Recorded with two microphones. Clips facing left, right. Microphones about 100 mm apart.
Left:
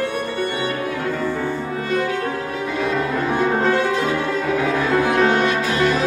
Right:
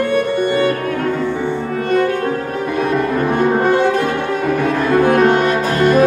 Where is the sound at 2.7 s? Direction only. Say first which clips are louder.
Right 5 dB; 55° right (ahead or behind).